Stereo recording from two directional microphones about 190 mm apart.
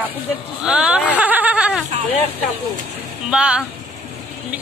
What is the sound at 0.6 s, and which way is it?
A woman's voice, 5° right (ahead or behind).